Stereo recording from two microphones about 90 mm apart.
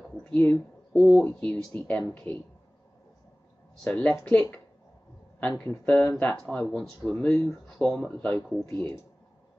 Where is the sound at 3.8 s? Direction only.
15° left (ahead or behind).